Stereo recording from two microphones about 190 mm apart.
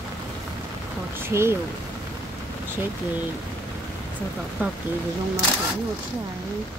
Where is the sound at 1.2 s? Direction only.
15° right (ahead or behind).